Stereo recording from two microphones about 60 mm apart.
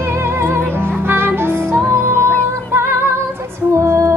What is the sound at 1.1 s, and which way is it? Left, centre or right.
Music, right.